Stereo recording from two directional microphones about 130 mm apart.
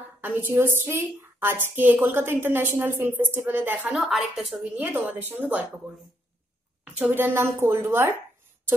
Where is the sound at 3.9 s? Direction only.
Centre (ahead or behind).